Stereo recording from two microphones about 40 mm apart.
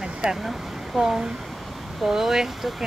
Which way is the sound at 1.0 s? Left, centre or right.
Centre.